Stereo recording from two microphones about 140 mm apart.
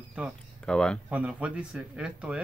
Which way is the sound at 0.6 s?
5° left (ahead or behind).